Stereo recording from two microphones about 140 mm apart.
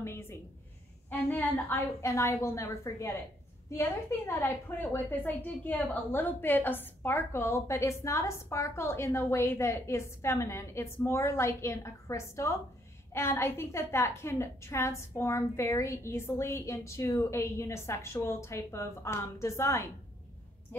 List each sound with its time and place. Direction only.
0.0 s a sound: 15° left (ahead or behind)
1.3 s a woman's voice: 15° left (ahead or behind)
4.3 s a woman's voice: 15° left (ahead or behind)